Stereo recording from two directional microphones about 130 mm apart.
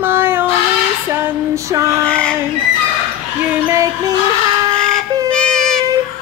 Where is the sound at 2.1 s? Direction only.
10° left (ahead or behind).